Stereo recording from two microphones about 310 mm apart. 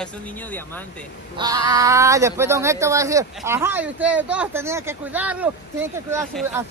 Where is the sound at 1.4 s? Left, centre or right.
Centre.